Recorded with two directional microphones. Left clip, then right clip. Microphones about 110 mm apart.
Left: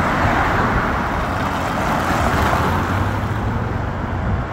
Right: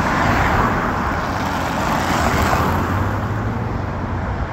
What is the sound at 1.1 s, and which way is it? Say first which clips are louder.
Vehicle: even; 15° left (ahead or behind).